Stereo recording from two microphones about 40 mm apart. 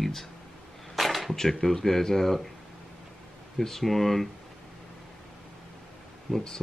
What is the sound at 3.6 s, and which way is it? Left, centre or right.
Speech, centre.